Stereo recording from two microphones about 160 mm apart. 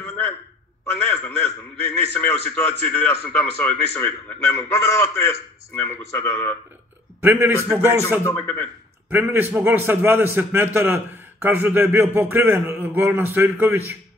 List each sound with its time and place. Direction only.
1.0 s speech: 10° left (ahead or behind)
7.2 s speech: 10° right (ahead or behind)
8.2 s speech: 15° left (ahead or behind)
9.1 s speech: 10° right (ahead or behind)